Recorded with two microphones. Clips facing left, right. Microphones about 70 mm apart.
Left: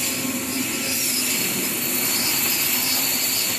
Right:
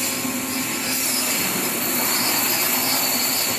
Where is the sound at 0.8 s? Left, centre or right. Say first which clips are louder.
Right 2 dB; right.